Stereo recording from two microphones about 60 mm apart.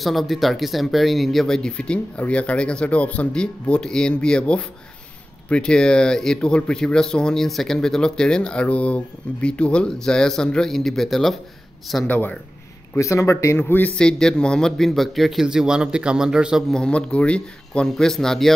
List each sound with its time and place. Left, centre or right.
0.0 s speech: centre
13.0 s a man's voice: left
13.6 s a man's voice: left
13.9 s speech: centre
15.4 s a man's voice: centre
16.7 s speech: centre